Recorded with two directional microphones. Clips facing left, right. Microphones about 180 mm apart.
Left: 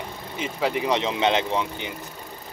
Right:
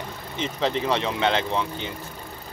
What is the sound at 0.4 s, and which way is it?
Speech, 10° left (ahead or behind).